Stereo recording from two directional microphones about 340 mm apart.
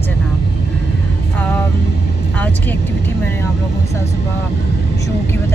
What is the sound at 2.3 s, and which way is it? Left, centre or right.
Speech, centre.